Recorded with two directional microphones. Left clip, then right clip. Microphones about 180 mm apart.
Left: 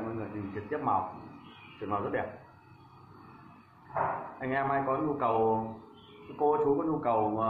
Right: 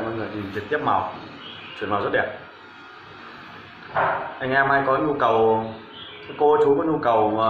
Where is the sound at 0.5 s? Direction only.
25° right (ahead or behind).